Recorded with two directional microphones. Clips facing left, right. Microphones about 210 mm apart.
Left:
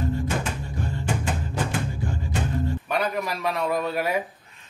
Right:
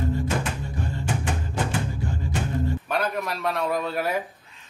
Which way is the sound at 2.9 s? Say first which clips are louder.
Left 3 dB; centre (ahead or behind).